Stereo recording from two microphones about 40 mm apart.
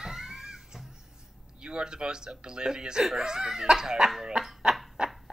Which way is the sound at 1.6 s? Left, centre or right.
Right.